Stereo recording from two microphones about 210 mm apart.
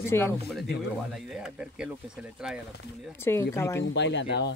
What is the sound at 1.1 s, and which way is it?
Speech, centre (ahead or behind).